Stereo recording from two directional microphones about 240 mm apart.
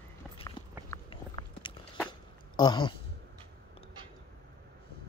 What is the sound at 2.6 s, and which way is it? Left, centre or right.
Speech, centre.